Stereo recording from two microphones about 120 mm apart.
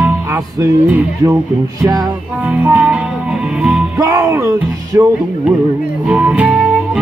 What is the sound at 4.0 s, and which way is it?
Speech, 25° right (ahead or behind).